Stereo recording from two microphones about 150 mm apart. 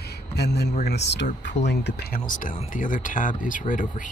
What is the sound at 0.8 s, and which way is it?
Speech, 55° left (ahead or behind).